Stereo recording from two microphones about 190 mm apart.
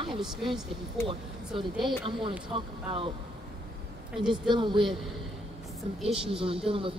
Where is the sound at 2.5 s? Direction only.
25° right (ahead or behind).